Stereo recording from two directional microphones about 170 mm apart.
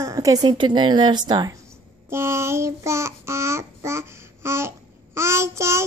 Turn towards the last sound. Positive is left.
turn(degrees=-15)  # may be behind; listen again after turning